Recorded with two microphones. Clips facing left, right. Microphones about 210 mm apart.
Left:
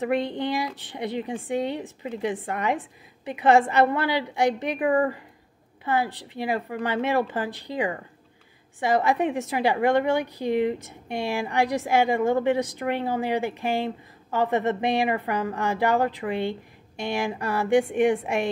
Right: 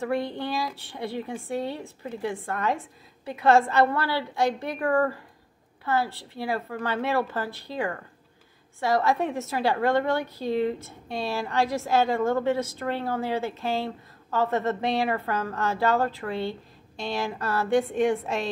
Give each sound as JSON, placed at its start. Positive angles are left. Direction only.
{"t": 0.0, "sound": "a woman's voice", "side_deg": 20}